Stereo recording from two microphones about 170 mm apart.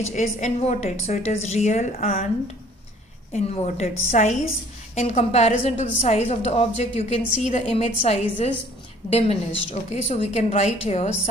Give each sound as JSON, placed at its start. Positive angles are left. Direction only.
{"t": 0.1, "sound": "a woman's voice", "side_deg": 45}
{"t": 3.3, "sound": "a woman's voice", "side_deg": 35}